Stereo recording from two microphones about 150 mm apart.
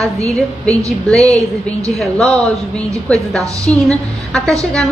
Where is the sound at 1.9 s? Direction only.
Centre (ahead or behind).